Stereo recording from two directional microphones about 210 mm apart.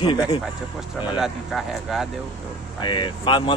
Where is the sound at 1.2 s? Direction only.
Centre (ahead or behind).